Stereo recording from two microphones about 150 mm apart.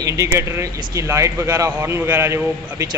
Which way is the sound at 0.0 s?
20° right (ahead or behind).